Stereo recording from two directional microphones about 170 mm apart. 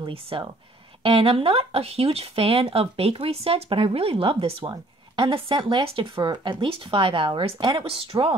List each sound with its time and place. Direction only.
0.0 s speech: 30° right (ahead or behind)